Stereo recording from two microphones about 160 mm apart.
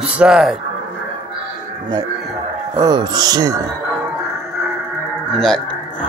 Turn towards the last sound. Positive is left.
turn(degrees=5)  # may be behind; listen again after turning